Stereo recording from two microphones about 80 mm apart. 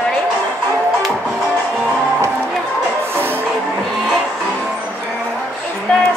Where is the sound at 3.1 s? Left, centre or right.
Right.